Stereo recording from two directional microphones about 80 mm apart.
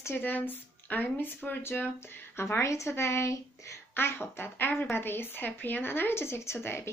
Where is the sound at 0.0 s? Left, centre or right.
Left.